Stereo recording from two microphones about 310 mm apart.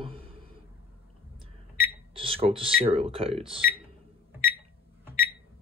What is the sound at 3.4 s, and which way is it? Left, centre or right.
Speech, centre.